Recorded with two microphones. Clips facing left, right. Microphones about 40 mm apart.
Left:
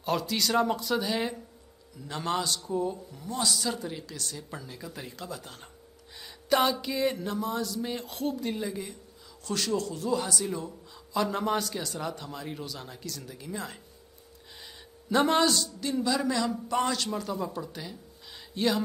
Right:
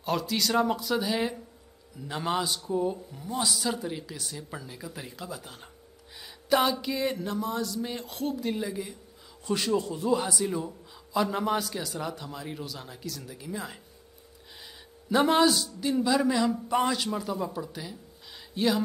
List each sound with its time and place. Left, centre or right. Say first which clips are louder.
0.0 s a man's voice: even; centre
9.5 s a man's voice: right 2 dB; centre
15.0 s a man's voice: right 2 dB; centre